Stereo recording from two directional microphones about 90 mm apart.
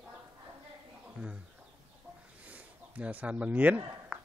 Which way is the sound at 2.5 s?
15° right (ahead or behind).